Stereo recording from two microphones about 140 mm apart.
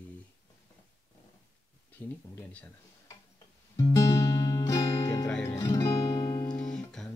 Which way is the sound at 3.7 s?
25° left (ahead or behind).